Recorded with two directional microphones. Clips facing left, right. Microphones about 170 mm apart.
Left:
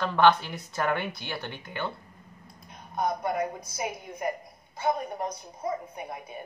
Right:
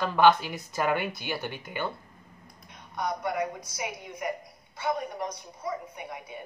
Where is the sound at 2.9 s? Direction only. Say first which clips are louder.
Left 2 dB; 30° left (ahead or behind).